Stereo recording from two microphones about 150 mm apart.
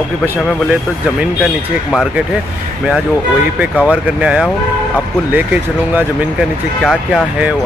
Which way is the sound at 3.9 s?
5° right (ahead or behind).